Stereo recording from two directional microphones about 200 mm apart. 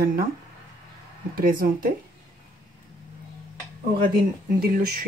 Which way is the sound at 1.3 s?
45° right (ahead or behind).